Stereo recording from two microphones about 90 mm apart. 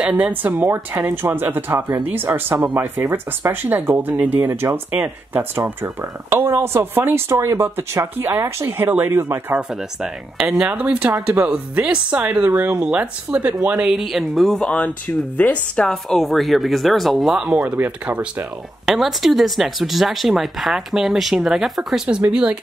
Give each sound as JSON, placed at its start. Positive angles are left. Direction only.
{"t": 0.0, "sound": "speech", "side_deg": -15}
{"t": 9.6, "sound": "speech", "side_deg": -10}
{"t": 12.4, "sound": "speech", "side_deg": -25}
{"t": 12.7, "sound": "speech", "side_deg": -10}
{"t": 14.6, "sound": "speech", "side_deg": 15}
{"t": 18.9, "sound": "speech", "side_deg": -5}